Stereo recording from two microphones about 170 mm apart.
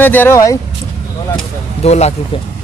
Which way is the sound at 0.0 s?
10° left (ahead or behind).